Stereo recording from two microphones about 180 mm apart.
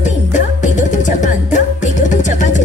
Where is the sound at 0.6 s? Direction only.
45° left (ahead or behind).